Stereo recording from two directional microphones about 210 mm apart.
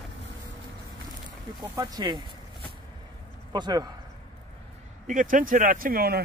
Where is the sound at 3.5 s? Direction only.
20° right (ahead or behind).